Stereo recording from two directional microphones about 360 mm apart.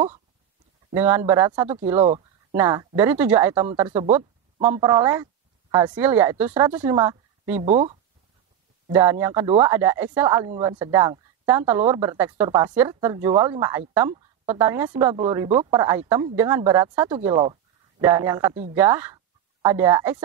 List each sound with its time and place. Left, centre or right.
0.9 s speech: centre
2.0 s speech: centre